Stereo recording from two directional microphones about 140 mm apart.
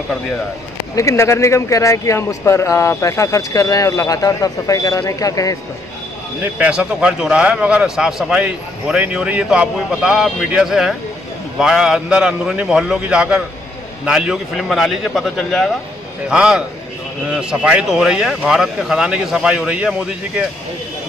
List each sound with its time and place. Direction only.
0.9 s speech: 20° left (ahead or behind)
6.4 s a man's voice: 10° right (ahead or behind)